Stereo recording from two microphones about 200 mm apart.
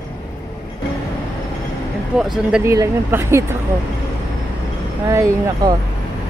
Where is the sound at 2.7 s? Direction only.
15° right (ahead or behind).